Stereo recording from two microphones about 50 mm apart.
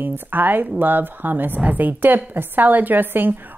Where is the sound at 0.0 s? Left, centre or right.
Right.